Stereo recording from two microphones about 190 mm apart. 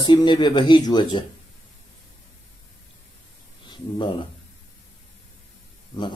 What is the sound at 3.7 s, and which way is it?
Speech, 25° left (ahead or behind).